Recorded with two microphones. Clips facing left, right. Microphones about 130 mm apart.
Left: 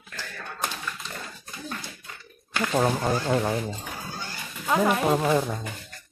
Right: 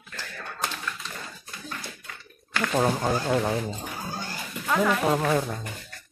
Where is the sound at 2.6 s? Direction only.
5° left (ahead or behind).